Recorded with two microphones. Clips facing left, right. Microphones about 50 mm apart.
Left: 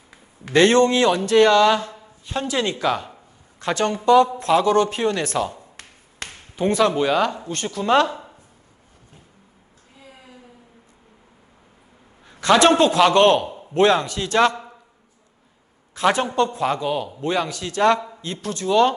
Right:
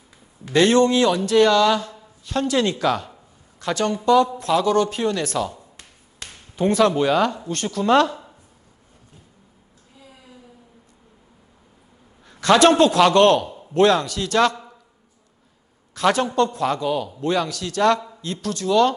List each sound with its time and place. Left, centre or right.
0.5 s a man's voice: left
2.0 s a man's voice: left
6.2 s a sound: left
6.7 s a man's voice: left
9.9 s a sound: left
12.3 s a man's voice: left
15.9 s a man's voice: left